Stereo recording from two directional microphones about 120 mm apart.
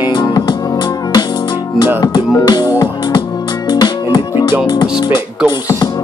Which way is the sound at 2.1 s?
35° left (ahead or behind).